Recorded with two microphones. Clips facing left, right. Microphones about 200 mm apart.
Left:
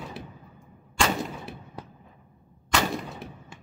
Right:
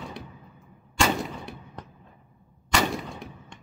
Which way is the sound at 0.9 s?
Centre (ahead or behind).